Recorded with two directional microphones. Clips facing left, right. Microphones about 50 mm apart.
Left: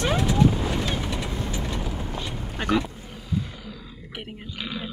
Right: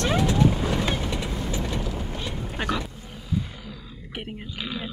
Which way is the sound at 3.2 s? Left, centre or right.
Centre.